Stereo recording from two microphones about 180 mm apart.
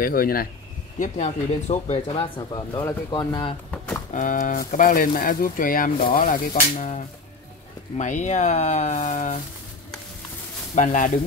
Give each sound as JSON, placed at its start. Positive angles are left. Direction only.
{"t": 0.0, "sound": "speech", "side_deg": 55}
{"t": 3.7, "sound": "a sound", "side_deg": 5}
{"t": 4.1, "sound": "speech", "side_deg": 45}
{"t": 8.0, "sound": "speech", "side_deg": 40}
{"t": 10.7, "sound": "speech", "side_deg": 45}